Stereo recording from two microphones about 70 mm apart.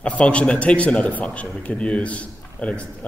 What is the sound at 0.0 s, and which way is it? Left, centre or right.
A man's voice, centre.